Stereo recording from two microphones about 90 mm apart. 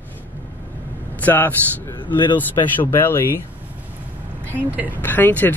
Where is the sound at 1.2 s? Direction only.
20° left (ahead or behind).